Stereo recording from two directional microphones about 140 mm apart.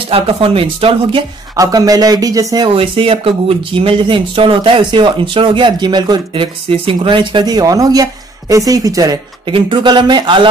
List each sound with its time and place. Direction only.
0.1 s speech: 40° right (ahead or behind)
1.6 s speech: 25° right (ahead or behind)